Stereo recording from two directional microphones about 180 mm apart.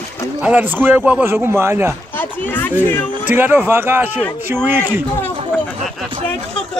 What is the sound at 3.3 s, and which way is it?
Speech, 10° right (ahead or behind).